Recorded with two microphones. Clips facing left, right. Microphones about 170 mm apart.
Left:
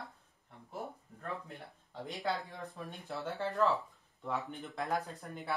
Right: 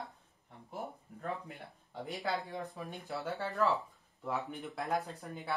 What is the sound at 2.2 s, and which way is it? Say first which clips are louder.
Speech: even; centre (ahead or behind).